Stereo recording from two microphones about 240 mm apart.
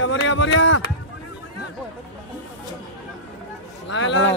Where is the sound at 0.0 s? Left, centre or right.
Left.